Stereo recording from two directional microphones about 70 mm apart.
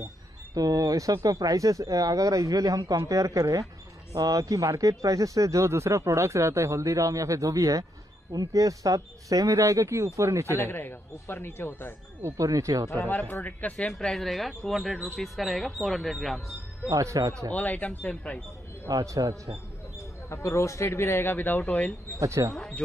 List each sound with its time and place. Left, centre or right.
0.6 s speech: right
10.6 s speech: left
12.2 s speech: right
12.4 s speech: right
12.9 s speech: left
13.7 s speech: centre
16.9 s speech: right
17.5 s speech: left
18.9 s speech: right
20.2 s speech: left
22.2 s speech: right